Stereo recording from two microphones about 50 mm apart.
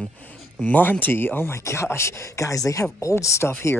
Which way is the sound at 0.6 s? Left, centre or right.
Left.